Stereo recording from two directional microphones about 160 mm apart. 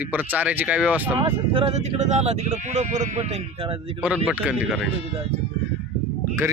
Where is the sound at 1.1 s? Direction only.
35° right (ahead or behind).